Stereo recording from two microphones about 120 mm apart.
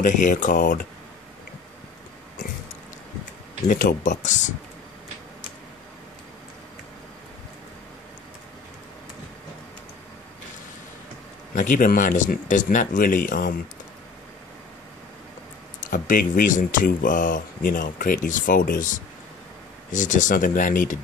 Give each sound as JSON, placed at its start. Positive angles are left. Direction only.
{"t": 0.0, "sound": "speech", "side_deg": 90}
{"t": 3.6, "sound": "speech", "side_deg": 90}
{"t": 11.5, "sound": "speech", "side_deg": 90}
{"t": 15.8, "sound": "speech", "side_deg": 90}